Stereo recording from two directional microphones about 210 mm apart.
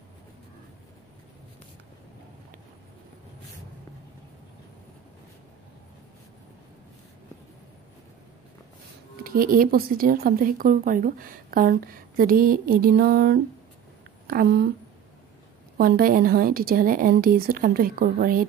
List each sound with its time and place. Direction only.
9.2 s speech: 45° right (ahead or behind)
15.8 s speech: 45° right (ahead or behind)